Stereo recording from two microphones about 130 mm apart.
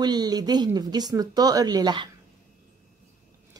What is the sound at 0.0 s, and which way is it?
Speech, 30° right (ahead or behind).